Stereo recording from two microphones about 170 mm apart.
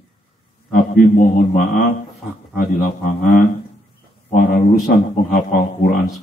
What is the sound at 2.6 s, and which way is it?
Speech, 55° left (ahead or behind).